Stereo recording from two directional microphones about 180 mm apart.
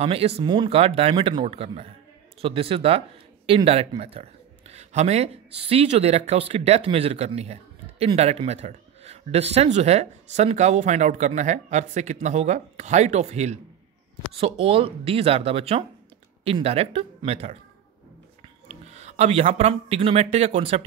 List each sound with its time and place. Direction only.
0.0 s a man's voice: 35° right (ahead or behind)
18.7 s speech: 35° right (ahead or behind)